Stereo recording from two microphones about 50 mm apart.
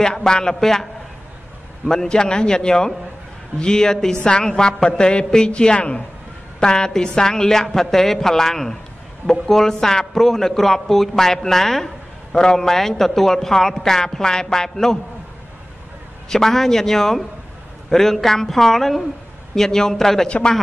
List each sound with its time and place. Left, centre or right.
0.0 s a man's voice: centre
1.9 s a man's voice: centre
16.3 s a man's voice: centre